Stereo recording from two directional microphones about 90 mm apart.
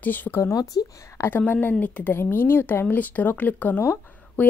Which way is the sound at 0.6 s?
45° left (ahead or behind).